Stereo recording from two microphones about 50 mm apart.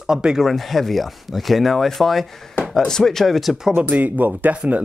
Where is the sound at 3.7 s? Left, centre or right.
Right.